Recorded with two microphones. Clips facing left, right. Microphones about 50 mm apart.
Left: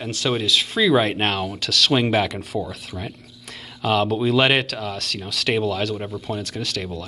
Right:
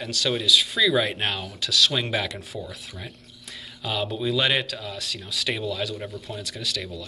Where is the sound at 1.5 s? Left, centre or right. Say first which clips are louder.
Left 3 dB; left.